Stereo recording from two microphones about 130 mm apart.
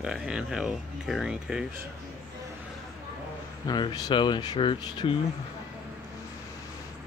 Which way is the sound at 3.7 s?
35° left (ahead or behind).